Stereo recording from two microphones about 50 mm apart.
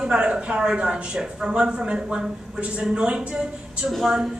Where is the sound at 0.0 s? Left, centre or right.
Centre.